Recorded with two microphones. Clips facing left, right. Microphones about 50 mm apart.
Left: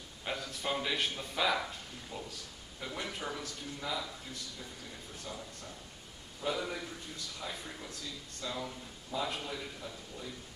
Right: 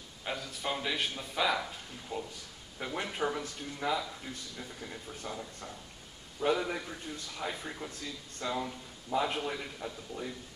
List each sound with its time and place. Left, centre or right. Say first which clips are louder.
0.2 s speech: right 1 dB; centre
2.1 s speech: right 6 dB; centre
5.3 s speech: right 3 dB; right
8.4 s speech: right 5 dB; right
9.1 s speech: right 5 dB; right